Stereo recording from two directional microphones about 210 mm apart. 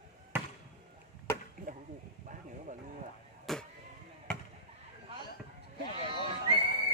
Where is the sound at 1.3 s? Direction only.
40° right (ahead or behind).